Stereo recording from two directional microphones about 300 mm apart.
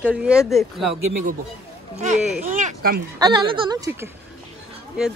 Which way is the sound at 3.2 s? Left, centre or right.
Centre.